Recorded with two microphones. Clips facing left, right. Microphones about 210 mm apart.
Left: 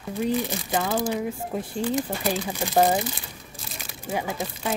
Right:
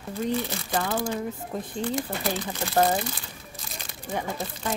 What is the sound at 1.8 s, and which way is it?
Speech, 10° left (ahead or behind).